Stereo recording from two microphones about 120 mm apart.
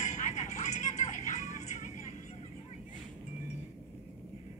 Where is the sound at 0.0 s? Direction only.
80° left.